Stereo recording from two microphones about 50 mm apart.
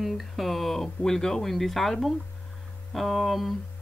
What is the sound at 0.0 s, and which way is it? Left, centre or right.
Speech, centre.